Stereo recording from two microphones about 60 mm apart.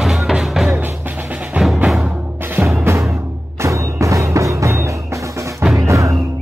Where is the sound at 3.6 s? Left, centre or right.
Right.